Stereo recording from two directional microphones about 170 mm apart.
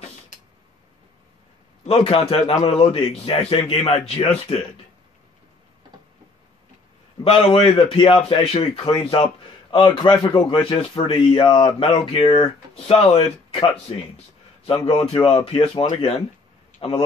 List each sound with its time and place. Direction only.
1.9 s speech: 35° left (ahead or behind)
7.2 s speech: 35° left (ahead or behind)
10.7 s a man's voice: 30° left (ahead or behind)